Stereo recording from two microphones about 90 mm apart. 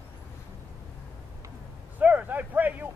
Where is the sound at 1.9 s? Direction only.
20° right (ahead or behind).